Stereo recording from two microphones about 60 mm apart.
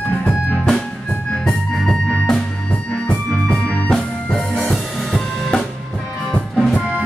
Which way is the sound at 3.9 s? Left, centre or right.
Centre.